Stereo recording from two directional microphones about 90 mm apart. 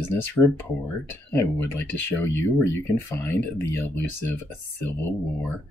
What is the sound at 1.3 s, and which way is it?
Speech, 20° left (ahead or behind).